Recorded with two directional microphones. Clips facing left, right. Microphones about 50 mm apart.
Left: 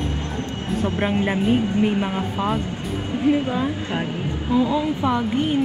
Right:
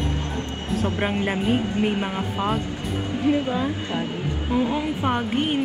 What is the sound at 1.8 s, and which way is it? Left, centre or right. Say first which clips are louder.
Speech: left 3 dB; right.